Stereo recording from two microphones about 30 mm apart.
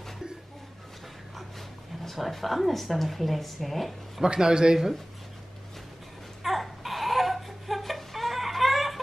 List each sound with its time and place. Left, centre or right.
2.3 s speech: centre
4.2 s a man's voice: right
6.4 s baby cry: centre